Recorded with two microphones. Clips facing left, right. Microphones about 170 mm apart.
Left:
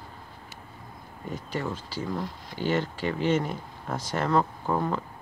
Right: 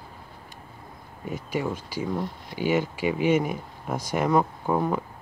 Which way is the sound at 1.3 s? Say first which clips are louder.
Right 3 dB; 10° right (ahead or behind).